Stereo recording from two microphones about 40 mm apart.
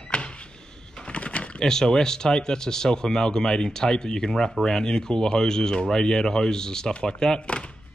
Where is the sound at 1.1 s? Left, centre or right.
Left.